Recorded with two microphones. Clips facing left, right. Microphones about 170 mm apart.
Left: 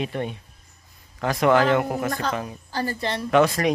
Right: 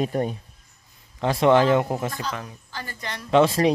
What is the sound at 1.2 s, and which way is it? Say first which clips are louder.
Speech: right 1 dB; 25° right (ahead or behind).